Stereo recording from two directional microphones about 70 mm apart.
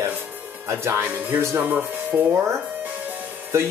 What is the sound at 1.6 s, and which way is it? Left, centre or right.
Speech, right.